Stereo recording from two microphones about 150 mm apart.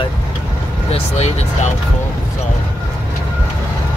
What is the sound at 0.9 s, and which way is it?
Speech, 45° left (ahead or behind).